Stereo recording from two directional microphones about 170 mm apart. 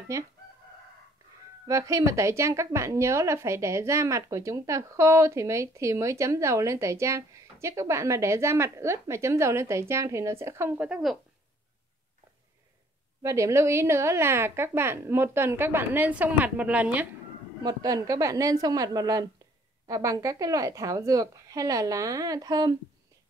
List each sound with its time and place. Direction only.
0.1 s a woman's voice: 20° right (ahead or behind)
1.7 s a woman's voice: 20° right (ahead or behind); by 11.1 s 5° right (ahead or behind)
13.2 s a woman's voice: 20° right (ahead or behind)
17.6 s a woman's voice: 20° right (ahead or behind)